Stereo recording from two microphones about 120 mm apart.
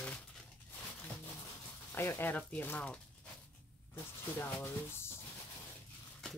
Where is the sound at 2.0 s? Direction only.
20° left (ahead or behind).